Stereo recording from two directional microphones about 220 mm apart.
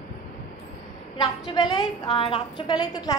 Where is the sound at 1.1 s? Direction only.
20° left (ahead or behind).